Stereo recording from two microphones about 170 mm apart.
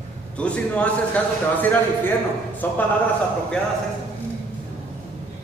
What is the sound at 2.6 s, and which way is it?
Speech, 10° left (ahead or behind).